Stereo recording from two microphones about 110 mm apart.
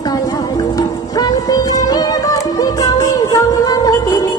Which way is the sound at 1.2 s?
35° left (ahead or behind).